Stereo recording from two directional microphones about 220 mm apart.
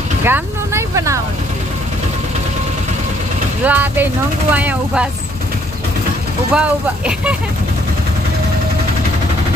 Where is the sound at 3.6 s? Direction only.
10° right (ahead or behind).